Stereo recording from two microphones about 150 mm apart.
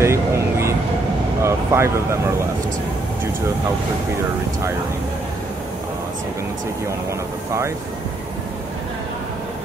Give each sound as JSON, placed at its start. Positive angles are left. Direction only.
{"t": 0.0, "sound": "vehicle", "side_deg": -20}
{"t": 1.4, "sound": "speech", "side_deg": -20}